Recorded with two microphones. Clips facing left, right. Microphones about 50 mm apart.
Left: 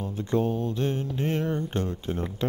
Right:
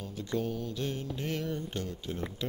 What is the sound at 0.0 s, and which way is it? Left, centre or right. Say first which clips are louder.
Mantra: left 7 dB; left.